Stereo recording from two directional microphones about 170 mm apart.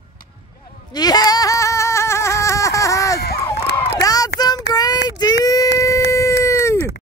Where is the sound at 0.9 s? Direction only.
25° left (ahead or behind).